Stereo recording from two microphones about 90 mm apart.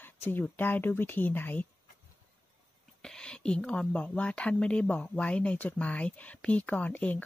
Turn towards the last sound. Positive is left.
turn(degrees=15)  # may be behind; listen again after turning